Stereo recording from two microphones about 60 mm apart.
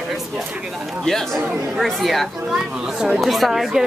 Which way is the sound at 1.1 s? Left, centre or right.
Centre.